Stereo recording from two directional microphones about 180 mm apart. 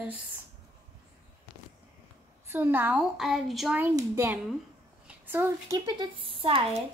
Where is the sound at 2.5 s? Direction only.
10° right (ahead or behind).